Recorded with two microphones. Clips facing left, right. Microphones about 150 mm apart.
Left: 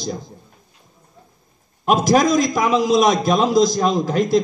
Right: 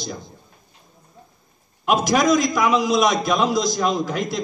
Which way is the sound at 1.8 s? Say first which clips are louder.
Left 2 dB; 40° left (ahead or behind).